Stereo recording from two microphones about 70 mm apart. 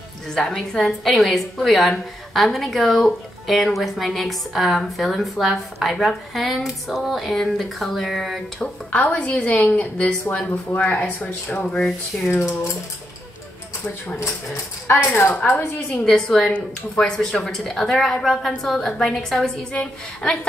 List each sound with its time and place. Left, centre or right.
0.3 s a woman's voice: centre
8.5 s a woman's voice: left
14.9 s speech: left
15.9 s a woman's voice: centre